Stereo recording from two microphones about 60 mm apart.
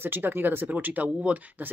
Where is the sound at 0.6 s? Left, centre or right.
Right.